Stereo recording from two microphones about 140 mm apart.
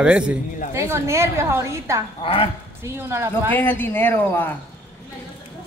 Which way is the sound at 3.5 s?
15° left (ahead or behind).